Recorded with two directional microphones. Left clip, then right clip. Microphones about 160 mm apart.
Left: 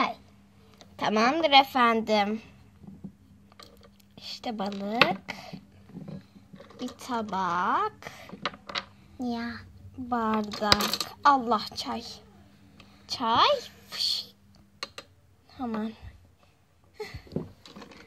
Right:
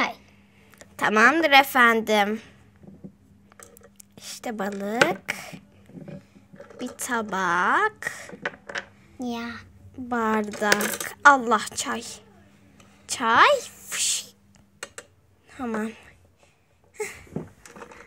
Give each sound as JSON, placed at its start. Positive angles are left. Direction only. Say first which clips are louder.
{"t": 0.9, "sound": "a woman's voice", "louder": "right 7 dB", "side_deg": 0}
{"t": 4.1, "sound": "chopping", "louder": "right 2 dB", "side_deg": -10}
{"t": 6.8, "sound": "a woman's voice", "louder": "right 5 dB", "side_deg": -10}
{"t": 9.2, "sound": "a child's voice", "louder": "right 2 dB", "side_deg": 40}
{"t": 10.0, "sound": "a woman's voice", "louder": "right 4 dB", "side_deg": -10}
{"t": 15.5, "sound": "a woman's voice", "louder": "right 4 dB", "side_deg": -10}
{"t": 16.9, "sound": "a sound", "louder": "right 7 dB", "side_deg": -10}